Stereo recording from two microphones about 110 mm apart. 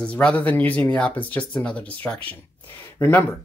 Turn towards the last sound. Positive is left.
turn(degrees=15)  # may be behind; listen again after turning